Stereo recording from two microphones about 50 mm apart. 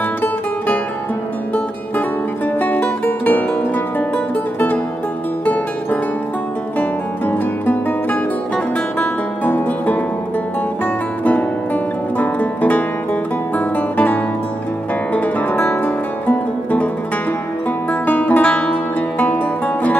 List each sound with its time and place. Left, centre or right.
2.6 s music: left
5.4 s music: left
11.2 s music: left
18.0 s music: left
18.4 s music: left